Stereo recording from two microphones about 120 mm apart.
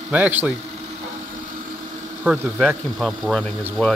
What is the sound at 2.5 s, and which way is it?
Speech, centre (ahead or behind).